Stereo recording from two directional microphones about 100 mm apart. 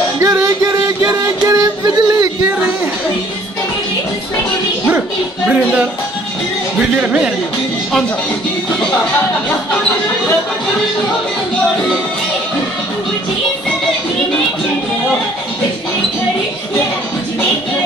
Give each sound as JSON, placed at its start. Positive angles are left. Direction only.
{"t": 0.2, "sound": "music", "side_deg": -30}
{"t": 6.8, "sound": "a man's voice", "side_deg": -15}